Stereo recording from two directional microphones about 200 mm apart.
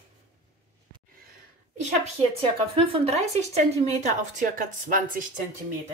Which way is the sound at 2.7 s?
30° right (ahead or behind).